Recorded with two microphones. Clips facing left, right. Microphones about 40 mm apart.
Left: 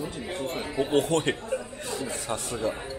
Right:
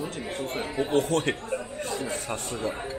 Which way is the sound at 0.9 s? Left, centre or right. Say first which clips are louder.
Even; left.